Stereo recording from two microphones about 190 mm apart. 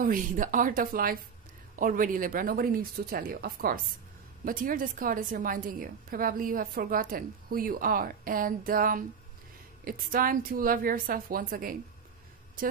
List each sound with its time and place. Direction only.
0.0 s a woman's voice: 45° right (ahead or behind)